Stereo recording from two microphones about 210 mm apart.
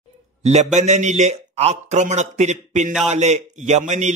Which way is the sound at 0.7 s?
35° right (ahead or behind).